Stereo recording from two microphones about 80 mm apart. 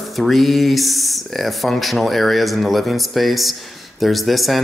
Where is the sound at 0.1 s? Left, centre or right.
Centre.